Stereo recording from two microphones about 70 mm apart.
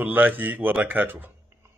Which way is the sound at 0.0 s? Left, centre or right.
Right.